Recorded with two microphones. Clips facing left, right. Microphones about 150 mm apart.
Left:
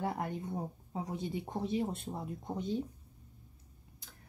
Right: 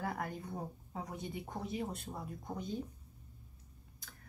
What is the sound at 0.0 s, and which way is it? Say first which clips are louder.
Speech: left 4 dB; 25° left (ahead or behind).